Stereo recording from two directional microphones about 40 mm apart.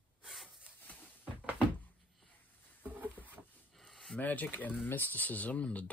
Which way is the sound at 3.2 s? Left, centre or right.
Left.